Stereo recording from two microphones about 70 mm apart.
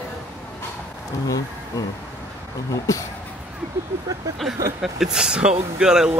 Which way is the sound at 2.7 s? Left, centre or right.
Left.